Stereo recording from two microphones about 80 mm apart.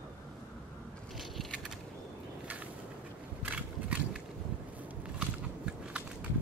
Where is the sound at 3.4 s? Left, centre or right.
Centre.